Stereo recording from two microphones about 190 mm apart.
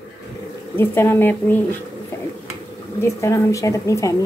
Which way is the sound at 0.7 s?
10° left (ahead or behind).